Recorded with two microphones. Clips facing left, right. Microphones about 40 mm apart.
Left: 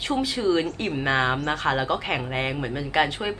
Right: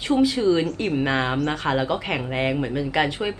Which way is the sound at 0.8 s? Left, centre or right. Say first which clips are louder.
Right 1 dB; centre.